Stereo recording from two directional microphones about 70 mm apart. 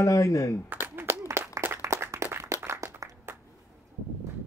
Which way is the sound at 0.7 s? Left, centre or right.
Right.